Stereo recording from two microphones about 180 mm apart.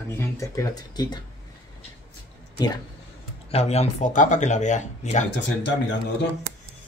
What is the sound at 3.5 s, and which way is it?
Speech, 35° left (ahead or behind).